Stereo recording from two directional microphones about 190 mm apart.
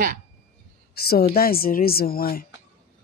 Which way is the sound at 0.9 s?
55° left (ahead or behind).